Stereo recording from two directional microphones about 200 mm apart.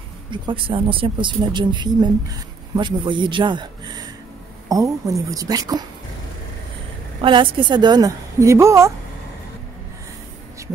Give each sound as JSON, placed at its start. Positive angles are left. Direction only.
{"t": 0.3, "sound": "speech", "side_deg": -25}
{"t": 7.2, "sound": "speech", "side_deg": -25}